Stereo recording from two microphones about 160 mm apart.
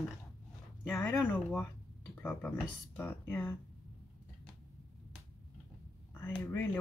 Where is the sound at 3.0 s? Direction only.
10° left (ahead or behind).